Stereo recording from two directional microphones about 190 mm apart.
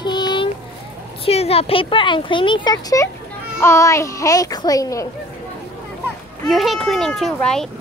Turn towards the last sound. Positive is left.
turn(degrees=0)  # may be behind; listen again after turning